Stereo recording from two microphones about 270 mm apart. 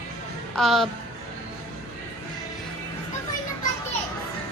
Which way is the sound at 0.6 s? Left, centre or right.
Centre.